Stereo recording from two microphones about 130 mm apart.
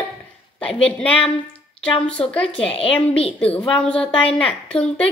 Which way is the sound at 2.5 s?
45° left (ahead or behind).